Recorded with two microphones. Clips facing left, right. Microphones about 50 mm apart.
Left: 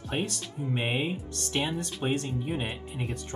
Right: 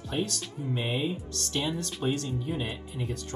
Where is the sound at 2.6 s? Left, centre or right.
Left.